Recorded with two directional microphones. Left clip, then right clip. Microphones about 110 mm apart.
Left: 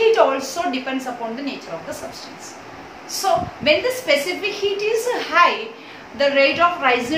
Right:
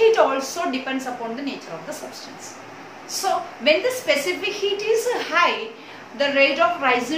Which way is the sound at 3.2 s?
15° right (ahead or behind).